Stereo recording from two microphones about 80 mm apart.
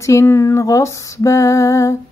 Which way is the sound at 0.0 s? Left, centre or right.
Left.